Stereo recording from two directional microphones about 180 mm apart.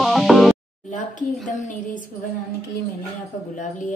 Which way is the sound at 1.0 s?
45° left (ahead or behind).